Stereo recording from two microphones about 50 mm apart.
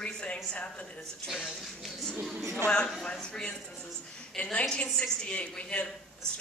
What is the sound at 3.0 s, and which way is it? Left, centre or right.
A woman's voice, centre.